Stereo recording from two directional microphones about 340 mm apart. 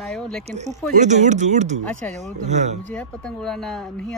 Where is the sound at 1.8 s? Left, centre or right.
Centre.